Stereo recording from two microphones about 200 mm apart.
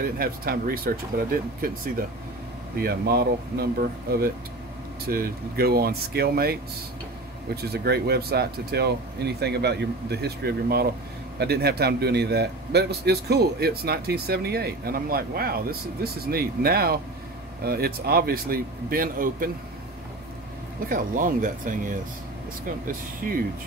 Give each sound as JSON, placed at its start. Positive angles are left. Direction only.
{"t": 0.2, "sound": "a man's voice", "side_deg": -50}
{"t": 5.0, "sound": "a man's voice", "side_deg": -50}
{"t": 7.6, "sound": "a man's voice", "side_deg": -55}
{"t": 20.9, "sound": "a man's voice", "side_deg": -40}